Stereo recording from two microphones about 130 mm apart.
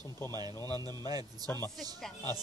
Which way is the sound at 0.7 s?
30° right (ahead or behind).